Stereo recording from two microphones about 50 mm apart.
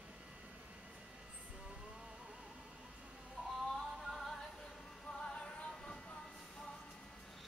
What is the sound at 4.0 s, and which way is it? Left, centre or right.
Music, centre.